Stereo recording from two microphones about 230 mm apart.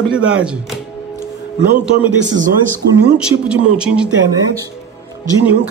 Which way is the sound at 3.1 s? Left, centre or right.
Centre.